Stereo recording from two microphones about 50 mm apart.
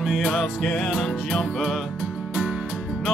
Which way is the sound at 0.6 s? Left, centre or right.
Centre.